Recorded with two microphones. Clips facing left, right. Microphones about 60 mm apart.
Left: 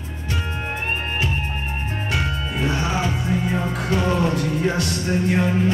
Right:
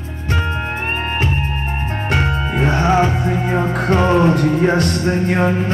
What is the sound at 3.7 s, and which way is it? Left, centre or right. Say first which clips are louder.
Music: right 9 dB; right.